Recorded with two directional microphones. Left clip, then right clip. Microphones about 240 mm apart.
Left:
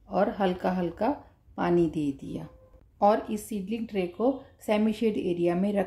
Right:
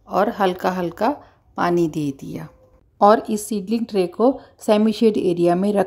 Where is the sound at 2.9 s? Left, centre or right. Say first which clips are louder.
Right 9 dB; right.